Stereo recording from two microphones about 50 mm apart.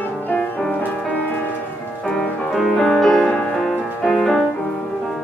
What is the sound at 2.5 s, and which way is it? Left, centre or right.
Music, centre.